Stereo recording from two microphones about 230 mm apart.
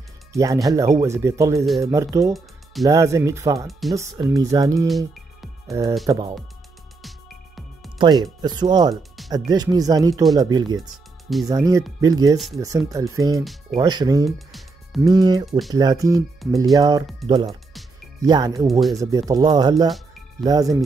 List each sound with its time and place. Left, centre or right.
0.3 s speech: centre
4.8 s music: centre
6.0 s speech: centre
7.0 s music: centre
8.0 s speech: centre
13.4 s speech: centre
13.7 s speech: centre
14.2 s music: centre
15.0 s speech: centre
18.7 s speech: centre
18.9 s speech: centre